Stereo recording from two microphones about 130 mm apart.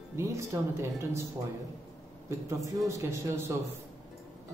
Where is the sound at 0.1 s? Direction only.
20° right (ahead or behind).